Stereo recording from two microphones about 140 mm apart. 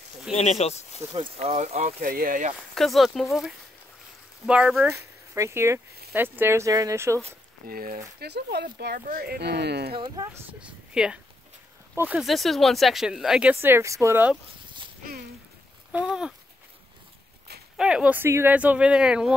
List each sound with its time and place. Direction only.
0.3 s speech: 50° left (ahead or behind)
1.1 s speech: 40° right (ahead or behind)
2.0 s speech: 90° right
2.7 s speech: centre (ahead or behind)
5.3 s speech: 20° right (ahead or behind)
7.6 s speech: 90° right
9.9 s speech: 30° right (ahead or behind)
10.9 s speech: 5° right (ahead or behind)
12.2 s speech: centre (ahead or behind); by 14.3 s 20° right (ahead or behind)
15.9 s speech: 10° right (ahead or behind)
17.7 s speech: 5° right (ahead or behind)